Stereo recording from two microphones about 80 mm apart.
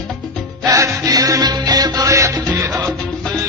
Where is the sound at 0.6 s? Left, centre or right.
Right.